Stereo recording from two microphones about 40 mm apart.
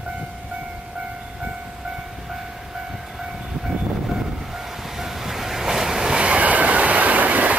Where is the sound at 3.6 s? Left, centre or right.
Centre; by 7.5 s right.